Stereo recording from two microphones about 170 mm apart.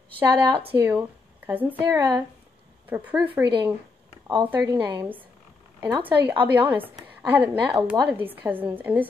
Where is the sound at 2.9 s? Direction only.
10° right (ahead or behind).